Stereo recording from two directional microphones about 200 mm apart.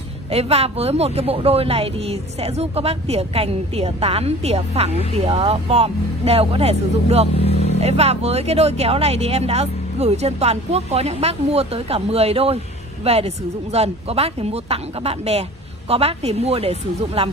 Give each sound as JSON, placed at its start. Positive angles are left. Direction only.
{"t": 0.3, "sound": "a woman's voice", "side_deg": -30}